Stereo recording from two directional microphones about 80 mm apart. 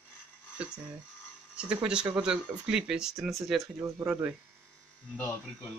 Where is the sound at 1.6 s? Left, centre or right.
Centre.